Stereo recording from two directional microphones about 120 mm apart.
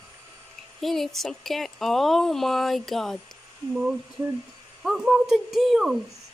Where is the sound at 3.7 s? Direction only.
5° right (ahead or behind).